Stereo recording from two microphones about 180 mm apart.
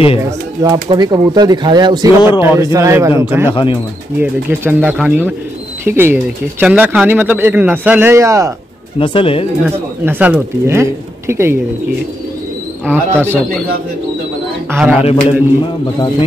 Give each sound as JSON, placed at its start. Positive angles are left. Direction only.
{"t": 0.2, "sound": "speech", "side_deg": -20}
{"t": 3.4, "sound": "speech", "side_deg": 30}
{"t": 4.2, "sound": "speech", "side_deg": -10}
{"t": 9.0, "sound": "speech", "side_deg": 30}
{"t": 10.0, "sound": "speech", "side_deg": -10}
{"t": 12.8, "sound": "speech", "side_deg": -10}
{"t": 14.7, "sound": "speech", "side_deg": -10}
{"t": 15.0, "sound": "speech", "side_deg": 35}